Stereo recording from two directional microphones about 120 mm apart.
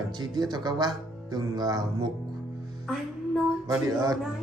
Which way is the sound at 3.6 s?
30° right (ahead or behind).